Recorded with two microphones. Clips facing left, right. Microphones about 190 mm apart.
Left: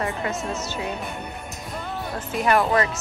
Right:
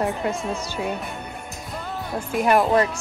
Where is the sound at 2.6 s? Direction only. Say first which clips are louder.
Right 3 dB; 15° right (ahead or behind).